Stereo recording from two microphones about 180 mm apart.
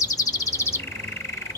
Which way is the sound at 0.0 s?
20° left (ahead or behind).